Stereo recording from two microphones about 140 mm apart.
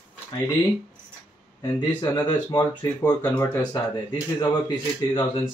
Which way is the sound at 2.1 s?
30° left (ahead or behind).